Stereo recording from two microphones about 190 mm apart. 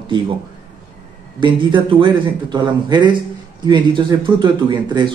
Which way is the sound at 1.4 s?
25° right (ahead or behind).